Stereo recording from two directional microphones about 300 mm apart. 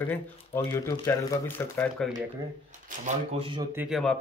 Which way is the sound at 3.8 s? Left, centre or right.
Centre.